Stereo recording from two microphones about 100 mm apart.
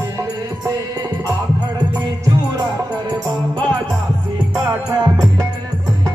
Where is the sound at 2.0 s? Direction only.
40° right (ahead or behind).